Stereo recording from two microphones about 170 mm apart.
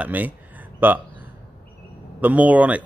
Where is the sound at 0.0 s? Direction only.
10° right (ahead or behind).